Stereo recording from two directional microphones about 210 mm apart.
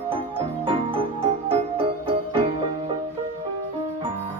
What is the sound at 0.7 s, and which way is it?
Music, 25° right (ahead or behind).